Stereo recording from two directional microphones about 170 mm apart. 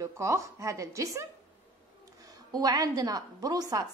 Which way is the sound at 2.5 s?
20° right (ahead or behind).